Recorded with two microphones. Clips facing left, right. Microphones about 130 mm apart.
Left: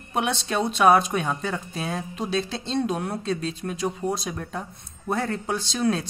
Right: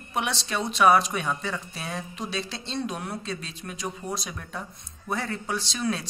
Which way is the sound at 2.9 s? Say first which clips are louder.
Left 6 dB; 25° left (ahead or behind).